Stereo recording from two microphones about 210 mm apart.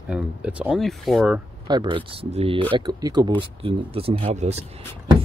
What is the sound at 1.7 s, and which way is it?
Speech, 20° right (ahead or behind).